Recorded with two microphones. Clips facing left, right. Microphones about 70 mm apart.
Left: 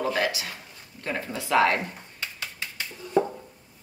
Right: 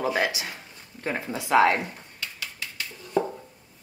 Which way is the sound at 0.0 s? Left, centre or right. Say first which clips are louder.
Right 1 dB; centre.